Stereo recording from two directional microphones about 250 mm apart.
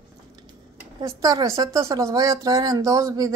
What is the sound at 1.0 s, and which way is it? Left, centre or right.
A woman's voice, centre.